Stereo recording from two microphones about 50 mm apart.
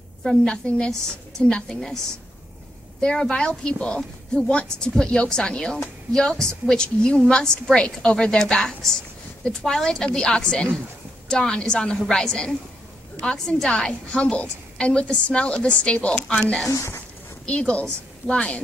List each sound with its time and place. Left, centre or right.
0.2 s a woman's voice: centre
0.7 s a woman's voice: centre
3.0 s a woman's voice: centre
16.6 s speech: left
17.5 s a woman's voice: left